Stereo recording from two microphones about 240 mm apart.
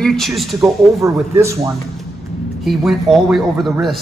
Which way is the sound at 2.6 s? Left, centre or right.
Centre.